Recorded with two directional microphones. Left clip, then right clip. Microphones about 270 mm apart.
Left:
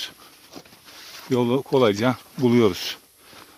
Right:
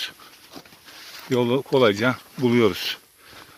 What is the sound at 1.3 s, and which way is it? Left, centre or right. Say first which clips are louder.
Speech: even; centre.